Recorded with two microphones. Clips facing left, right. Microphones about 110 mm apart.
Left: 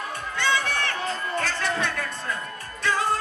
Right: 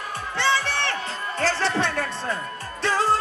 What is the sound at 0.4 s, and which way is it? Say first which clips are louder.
Crowd: right 2 dB; 30° right (ahead or behind).